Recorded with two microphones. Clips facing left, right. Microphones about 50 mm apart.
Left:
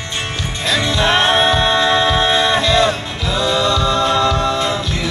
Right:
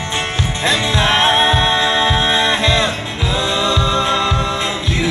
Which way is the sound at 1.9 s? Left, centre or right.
Right.